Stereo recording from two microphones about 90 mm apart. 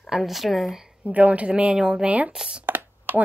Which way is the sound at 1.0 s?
15° right (ahead or behind).